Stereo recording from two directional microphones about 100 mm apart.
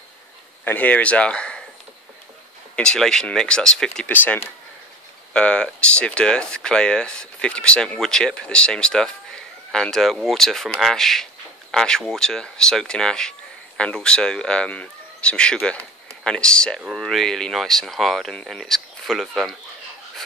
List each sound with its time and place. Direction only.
0.7 s speech: 15° left (ahead or behind)
2.7 s speech: 10° left (ahead or behind)
4.1 s speech: 15° left (ahead or behind); by 19.5 s centre (ahead or behind)